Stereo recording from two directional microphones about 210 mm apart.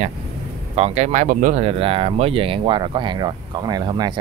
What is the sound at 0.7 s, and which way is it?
Speech, 30° right (ahead or behind).